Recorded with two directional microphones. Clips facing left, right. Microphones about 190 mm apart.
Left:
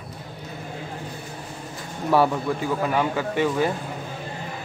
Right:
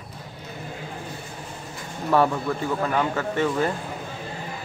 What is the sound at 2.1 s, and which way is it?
A man's voice, 10° left (ahead or behind).